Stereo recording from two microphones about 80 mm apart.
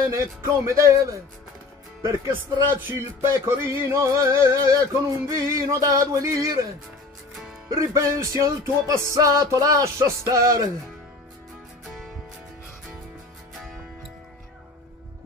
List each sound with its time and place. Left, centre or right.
0.1 s music: right
2.7 s music: right
7.7 s music: right